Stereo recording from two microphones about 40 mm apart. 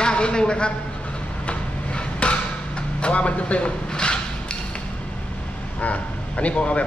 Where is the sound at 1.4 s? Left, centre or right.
Left.